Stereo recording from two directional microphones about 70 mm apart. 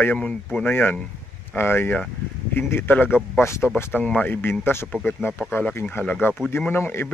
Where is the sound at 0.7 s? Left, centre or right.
Left.